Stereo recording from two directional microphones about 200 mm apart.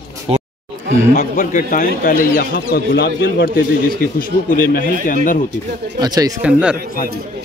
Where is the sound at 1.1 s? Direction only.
40° left (ahead or behind).